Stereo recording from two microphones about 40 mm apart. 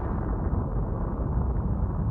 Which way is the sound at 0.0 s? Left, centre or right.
Centre.